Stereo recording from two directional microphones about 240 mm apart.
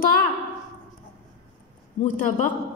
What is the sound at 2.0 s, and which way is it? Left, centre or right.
Speech, left.